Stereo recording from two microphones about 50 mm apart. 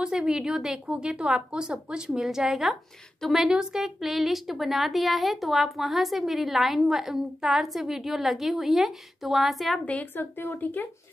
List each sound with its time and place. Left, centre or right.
0.0 s a woman's voice: centre
2.1 s a woman's voice: centre
3.4 s a woman's voice: centre
10.1 s speech: left
10.6 s speech: left